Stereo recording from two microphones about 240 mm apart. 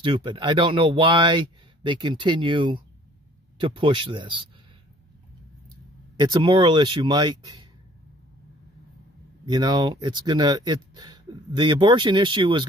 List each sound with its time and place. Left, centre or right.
0.0 s speech: centre
6.1 s speech: centre
9.5 s speech: centre